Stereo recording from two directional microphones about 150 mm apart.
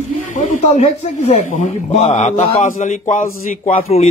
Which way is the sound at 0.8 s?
45° left (ahead or behind).